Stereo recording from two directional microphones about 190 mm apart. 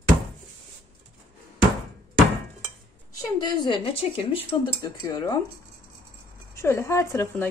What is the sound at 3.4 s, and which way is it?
Speech, 20° left (ahead or behind).